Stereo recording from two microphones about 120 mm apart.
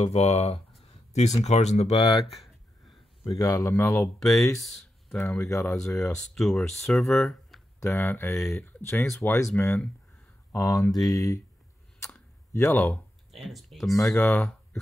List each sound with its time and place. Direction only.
0.0 s speech: 60° left (ahead or behind)
3.3 s speech: 30° left (ahead or behind)
4.2 s speech: centre (ahead or behind)
5.1 s speech: 15° left (ahead or behind)
5.5 s speech: 25° left (ahead or behind)
5.9 s speech: 5° left (ahead or behind)
7.8 s speech: 15° left (ahead or behind)
12.5 s speech: 20° left (ahead or behind)
12.8 s speech: centre (ahead or behind)
14.1 s speech: 15° left (ahead or behind)